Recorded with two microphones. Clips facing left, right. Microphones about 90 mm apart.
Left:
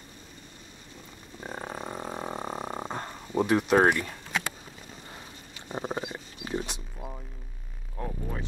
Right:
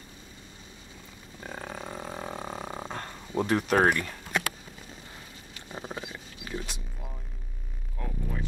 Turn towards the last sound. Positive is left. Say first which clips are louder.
# left 3 dB
turn(degrees=20)  # may be behind; listen again after turning